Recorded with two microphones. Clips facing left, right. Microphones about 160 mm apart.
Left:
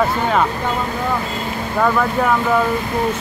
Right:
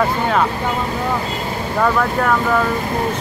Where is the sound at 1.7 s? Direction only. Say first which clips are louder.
Even; centre (ahead or behind).